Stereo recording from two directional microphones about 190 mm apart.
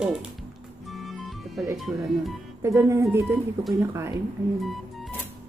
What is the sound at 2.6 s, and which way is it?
Speech, 15° right (ahead or behind).